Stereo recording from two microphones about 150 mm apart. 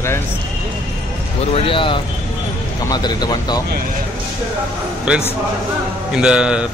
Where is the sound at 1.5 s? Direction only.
40° left (ahead or behind).